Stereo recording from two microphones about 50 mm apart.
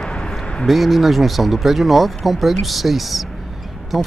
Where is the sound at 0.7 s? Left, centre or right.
Centre.